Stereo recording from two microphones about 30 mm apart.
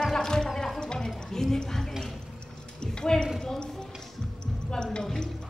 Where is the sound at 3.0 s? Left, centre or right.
Left.